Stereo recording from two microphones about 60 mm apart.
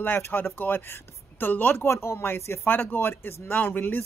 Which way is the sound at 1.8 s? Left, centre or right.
Left.